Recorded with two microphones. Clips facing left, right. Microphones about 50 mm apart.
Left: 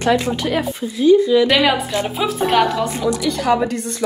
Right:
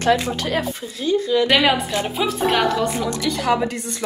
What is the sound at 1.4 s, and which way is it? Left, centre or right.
A woman's voice, centre.